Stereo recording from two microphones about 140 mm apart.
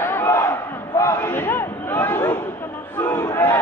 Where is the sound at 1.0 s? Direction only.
20° left (ahead or behind).